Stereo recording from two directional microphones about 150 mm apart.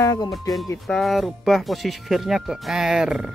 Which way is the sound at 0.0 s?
25° left (ahead or behind).